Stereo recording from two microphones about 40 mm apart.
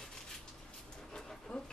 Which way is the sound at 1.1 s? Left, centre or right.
Centre.